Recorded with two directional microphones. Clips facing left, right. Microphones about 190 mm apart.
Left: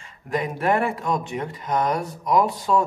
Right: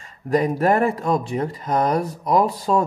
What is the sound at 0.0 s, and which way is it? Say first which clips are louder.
Speech: right 6 dB; 35° right (ahead or behind).